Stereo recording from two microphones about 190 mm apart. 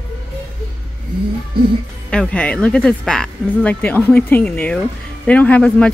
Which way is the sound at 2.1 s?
5° left (ahead or behind).